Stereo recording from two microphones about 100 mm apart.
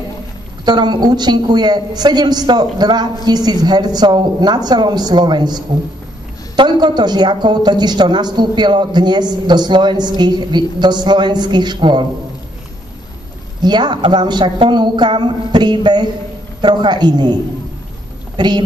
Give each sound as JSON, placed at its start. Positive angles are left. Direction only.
{"t": 0.7, "sound": "a woman's voice", "side_deg": -45}
{"t": 13.6, "sound": "a woman's voice", "side_deg": -45}